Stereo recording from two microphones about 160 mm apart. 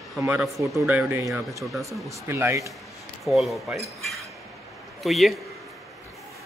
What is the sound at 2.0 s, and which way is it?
Speech, 15° right (ahead or behind).